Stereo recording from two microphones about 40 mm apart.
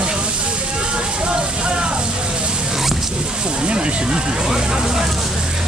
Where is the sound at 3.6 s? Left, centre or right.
Right.